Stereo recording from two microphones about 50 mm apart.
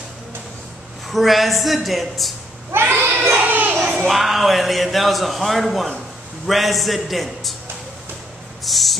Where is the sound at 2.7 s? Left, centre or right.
Right.